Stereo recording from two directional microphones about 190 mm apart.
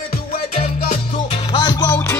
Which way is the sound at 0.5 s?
40° left (ahead or behind).